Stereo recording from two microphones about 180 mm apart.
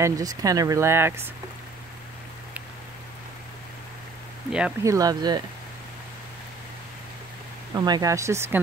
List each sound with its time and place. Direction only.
0.0 s speech: 20° right (ahead or behind)
4.5 s speech: 5° right (ahead or behind)
4.8 s speech: 20° right (ahead or behind)
7.7 s speech: 20° right (ahead or behind)